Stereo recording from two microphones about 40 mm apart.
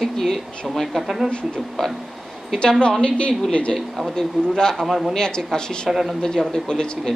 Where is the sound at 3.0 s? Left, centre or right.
Left.